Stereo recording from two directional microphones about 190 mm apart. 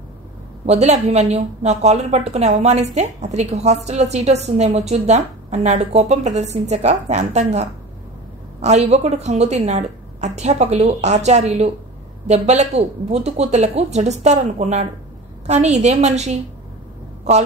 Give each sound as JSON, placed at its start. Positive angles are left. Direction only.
{"t": 0.7, "sound": "a woman's voice", "side_deg": -35}